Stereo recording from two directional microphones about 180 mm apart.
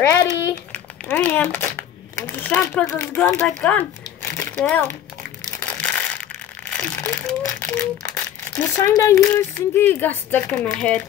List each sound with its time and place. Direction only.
0.0 s speech: 20° left (ahead or behind)
1.0 s speech: 10° left (ahead or behind)
4.2 s a sound: 15° left (ahead or behind)
5.6 s crumpling: 5° left (ahead or behind)
7.4 s speech: 10° left (ahead or behind)